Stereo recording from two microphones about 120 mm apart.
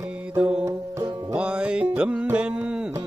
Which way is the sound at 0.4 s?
10° right (ahead or behind).